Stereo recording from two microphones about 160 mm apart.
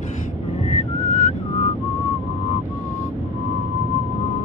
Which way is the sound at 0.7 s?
50° left (ahead or behind).